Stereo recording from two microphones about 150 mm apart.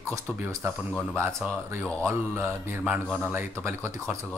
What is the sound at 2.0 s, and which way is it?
Speech, 15° right (ahead or behind).